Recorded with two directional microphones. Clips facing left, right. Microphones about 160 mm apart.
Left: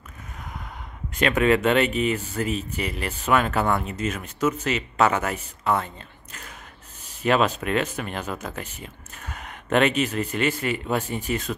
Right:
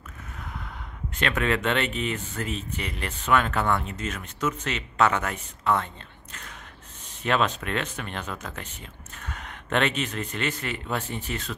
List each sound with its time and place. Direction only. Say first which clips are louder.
0.4 s a sound: left 1 dB; 15° left (ahead or behind)
1.1 s speech: left 6 dB; 10° left (ahead or behind)
7.1 s speech: left 4 dB; 10° left (ahead or behind)